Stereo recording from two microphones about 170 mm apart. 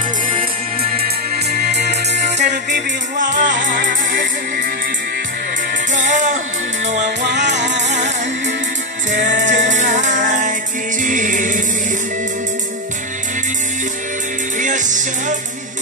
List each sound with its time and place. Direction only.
1.0 s music: 65° right (ahead or behind)
2.1 s music: 45° right (ahead or behind)
5.9 s music: 45° right (ahead or behind)
7.2 s music: 90° right
9.1 s music: 50° right (ahead or behind)
14.6 s music: 50° right (ahead or behind)